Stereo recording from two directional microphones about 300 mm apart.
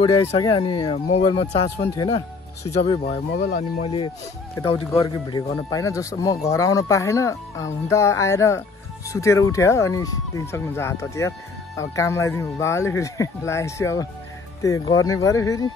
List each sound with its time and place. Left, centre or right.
0.0 s speech: centre
3.3 s speech: left
3.8 s speech: centre